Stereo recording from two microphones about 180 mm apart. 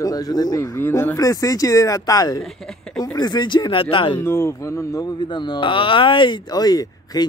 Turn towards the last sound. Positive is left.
turn(degrees=20)  # may be behind; listen again after turning